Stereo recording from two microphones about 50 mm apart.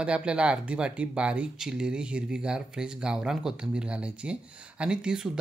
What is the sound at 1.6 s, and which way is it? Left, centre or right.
Speech, centre.